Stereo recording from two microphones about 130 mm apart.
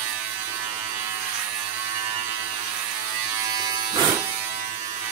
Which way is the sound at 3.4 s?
30° right (ahead or behind).